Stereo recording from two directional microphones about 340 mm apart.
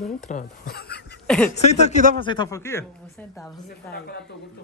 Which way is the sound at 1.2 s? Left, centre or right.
Centre.